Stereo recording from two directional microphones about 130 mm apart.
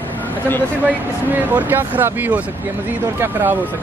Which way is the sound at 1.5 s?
15° right (ahead or behind).